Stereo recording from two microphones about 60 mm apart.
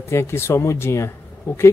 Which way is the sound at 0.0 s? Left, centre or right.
Left.